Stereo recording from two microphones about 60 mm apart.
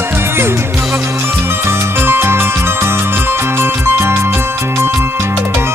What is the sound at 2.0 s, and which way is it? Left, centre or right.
Music, right.